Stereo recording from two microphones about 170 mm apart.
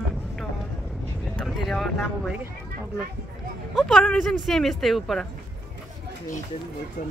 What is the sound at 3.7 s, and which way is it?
Speech, centre (ahead or behind).